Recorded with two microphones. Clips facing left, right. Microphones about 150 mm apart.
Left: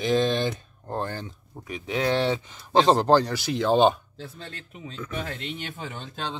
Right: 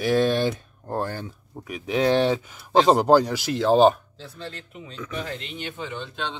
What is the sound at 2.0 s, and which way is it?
Speech, 25° right (ahead or behind).